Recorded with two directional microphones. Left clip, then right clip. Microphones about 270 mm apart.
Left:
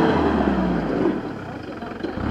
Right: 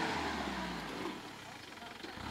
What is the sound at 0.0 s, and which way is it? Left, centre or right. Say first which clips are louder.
Vehicle: left 17 dB; right.